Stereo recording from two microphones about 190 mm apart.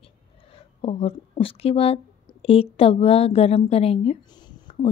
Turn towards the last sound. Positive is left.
turn(degrees=25)  # may be behind; listen again after turning